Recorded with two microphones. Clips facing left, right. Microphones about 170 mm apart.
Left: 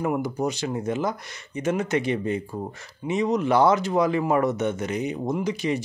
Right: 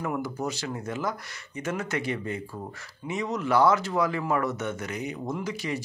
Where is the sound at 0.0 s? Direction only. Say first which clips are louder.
Left 5 dB; 20° left (ahead or behind).